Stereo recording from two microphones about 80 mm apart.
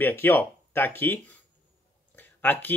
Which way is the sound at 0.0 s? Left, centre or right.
Left.